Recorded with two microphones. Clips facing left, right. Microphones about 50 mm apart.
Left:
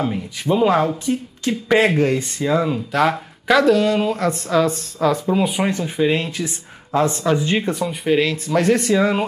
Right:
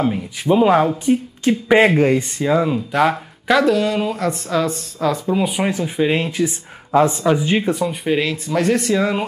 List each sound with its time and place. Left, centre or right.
0.0 s speech: centre